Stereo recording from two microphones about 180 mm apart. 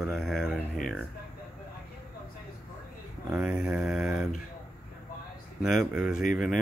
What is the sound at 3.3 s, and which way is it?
Speech, 5° right (ahead or behind).